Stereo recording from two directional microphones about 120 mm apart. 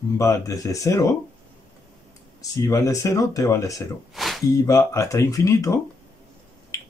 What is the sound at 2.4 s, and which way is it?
Speech, 25° left (ahead or behind).